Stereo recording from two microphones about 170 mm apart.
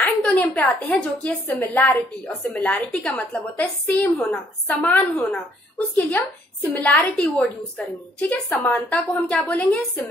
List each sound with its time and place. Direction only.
0.0 s a woman's voice: 10° left (ahead or behind)
6.7 s a woman's voice: 10° left (ahead or behind)